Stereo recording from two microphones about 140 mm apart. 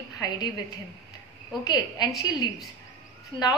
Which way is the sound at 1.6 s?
30° left (ahead or behind).